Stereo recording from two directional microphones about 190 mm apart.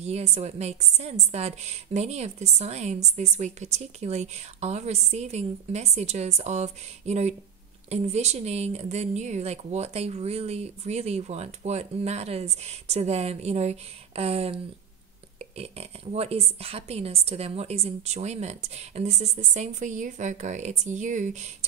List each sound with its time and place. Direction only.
0.0 s a woman's voice: 35° right (ahead or behind)